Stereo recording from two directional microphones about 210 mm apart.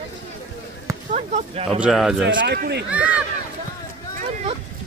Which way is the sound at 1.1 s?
30° right (ahead or behind).